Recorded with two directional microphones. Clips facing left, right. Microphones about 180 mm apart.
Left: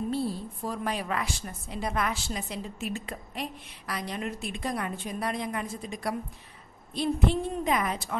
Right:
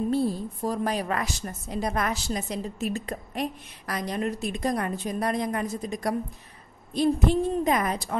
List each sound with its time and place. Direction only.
0.1 s a woman's voice: 45° right (ahead or behind)